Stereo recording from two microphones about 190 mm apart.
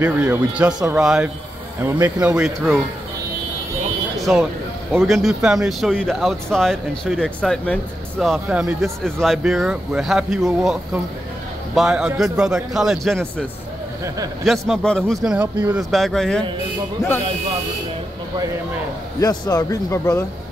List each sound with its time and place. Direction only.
0.0 s speech: 10° right (ahead or behind)
4.2 s speech: centre (ahead or behind)
14.0 s speech: 15° right (ahead or behind)
14.4 s speech: centre (ahead or behind)
15.2 s speech: 10° right (ahead or behind)
15.9 s speech: centre (ahead or behind)
19.1 s speech: 20° left (ahead or behind)